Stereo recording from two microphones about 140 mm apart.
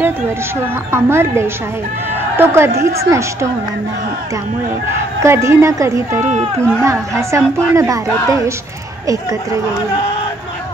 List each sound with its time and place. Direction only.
0.9 s a woman's voice: 20° right (ahead or behind)
5.2 s a woman's voice: 20° right (ahead or behind)